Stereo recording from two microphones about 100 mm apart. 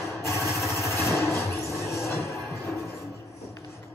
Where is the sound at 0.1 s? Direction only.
25° left (ahead or behind).